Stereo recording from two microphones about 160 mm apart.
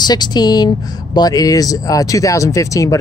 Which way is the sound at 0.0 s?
25° left (ahead or behind).